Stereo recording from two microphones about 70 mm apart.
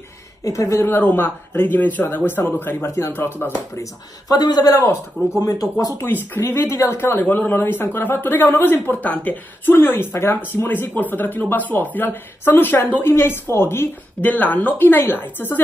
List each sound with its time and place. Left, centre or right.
0.5 s speech: left
0.8 s speech: left
4.3 s a man's voice: left
5.4 s speech: left
5.9 s speech: left